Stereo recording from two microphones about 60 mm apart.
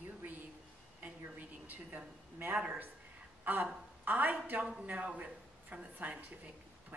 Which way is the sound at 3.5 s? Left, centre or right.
Right.